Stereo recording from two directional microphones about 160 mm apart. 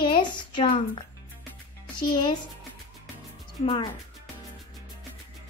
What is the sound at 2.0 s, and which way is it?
Speech, 30° left (ahead or behind).